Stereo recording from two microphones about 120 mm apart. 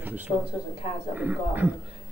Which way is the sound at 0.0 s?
15° right (ahead or behind).